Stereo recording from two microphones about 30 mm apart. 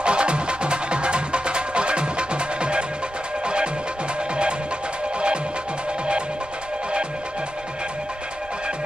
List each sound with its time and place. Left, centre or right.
0.0 s music: right